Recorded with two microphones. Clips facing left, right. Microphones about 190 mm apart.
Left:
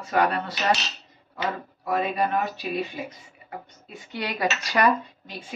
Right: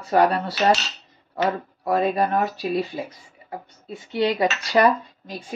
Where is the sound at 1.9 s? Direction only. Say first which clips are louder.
Right 4 dB; 35° right (ahead or behind).